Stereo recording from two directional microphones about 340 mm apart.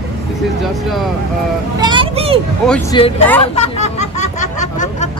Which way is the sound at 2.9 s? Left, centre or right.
Centre.